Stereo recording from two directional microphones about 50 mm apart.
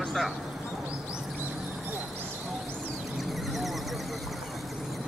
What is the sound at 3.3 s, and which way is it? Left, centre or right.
Horse, centre.